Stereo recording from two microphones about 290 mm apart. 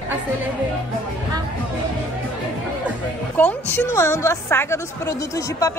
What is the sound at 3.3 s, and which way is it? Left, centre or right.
A woman's voice, centre.